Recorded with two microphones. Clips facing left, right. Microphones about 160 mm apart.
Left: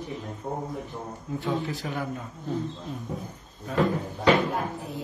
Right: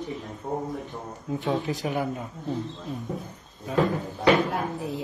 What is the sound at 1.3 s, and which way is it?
Speech, 20° right (ahead or behind).